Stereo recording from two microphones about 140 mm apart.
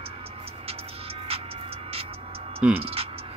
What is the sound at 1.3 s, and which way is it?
Music, 45° right (ahead or behind).